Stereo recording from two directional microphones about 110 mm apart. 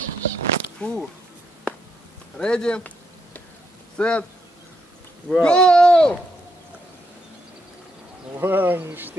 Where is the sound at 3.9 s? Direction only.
10° left (ahead or behind).